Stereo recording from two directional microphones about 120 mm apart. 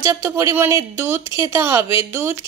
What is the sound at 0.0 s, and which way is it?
Speech, 25° right (ahead or behind).